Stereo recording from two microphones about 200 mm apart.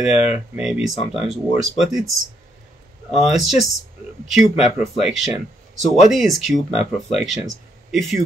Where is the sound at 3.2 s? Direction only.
Centre (ahead or behind).